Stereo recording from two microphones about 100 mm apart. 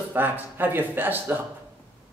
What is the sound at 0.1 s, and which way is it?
A man's voice, 20° right (ahead or behind).